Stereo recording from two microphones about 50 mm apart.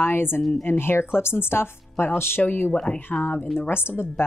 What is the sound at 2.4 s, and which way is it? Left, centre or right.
Speech, left.